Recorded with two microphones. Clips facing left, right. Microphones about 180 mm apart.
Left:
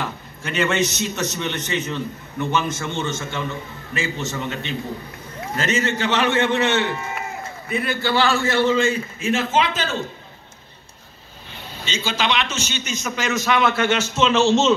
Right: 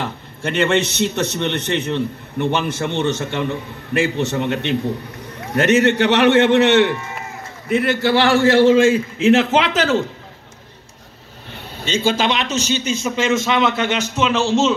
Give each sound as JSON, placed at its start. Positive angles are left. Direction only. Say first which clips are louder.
{"t": 0.4, "sound": "a man's voice", "louder": "right 4 dB", "side_deg": -65}
{"t": 11.8, "sound": "a man's voice", "louder": "right 7 dB", "side_deg": -55}